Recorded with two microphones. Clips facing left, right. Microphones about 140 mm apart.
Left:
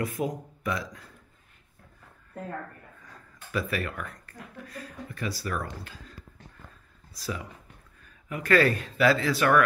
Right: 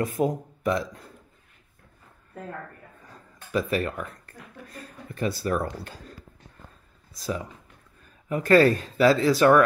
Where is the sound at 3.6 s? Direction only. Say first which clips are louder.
Right 5 dB; 30° right (ahead or behind).